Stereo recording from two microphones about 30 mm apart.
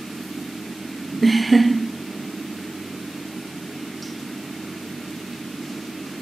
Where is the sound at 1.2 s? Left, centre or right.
Centre.